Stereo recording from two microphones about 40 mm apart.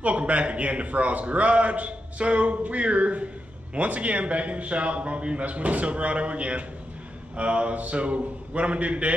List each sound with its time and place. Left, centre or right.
0.0 s a man's voice: right